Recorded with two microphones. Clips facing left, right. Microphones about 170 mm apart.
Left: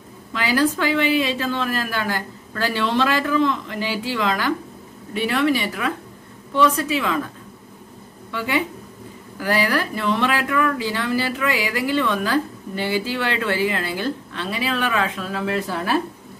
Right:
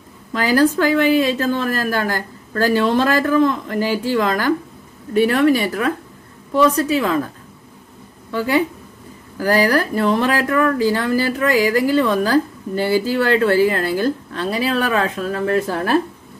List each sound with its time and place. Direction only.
0.3 s a woman's voice: 45° right (ahead or behind)
8.3 s a woman's voice: 40° right (ahead or behind)